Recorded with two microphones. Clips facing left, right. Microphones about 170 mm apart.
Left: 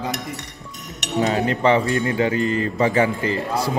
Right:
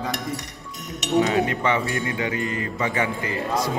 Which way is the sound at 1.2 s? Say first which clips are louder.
Left 3 dB; 35° left (ahead or behind).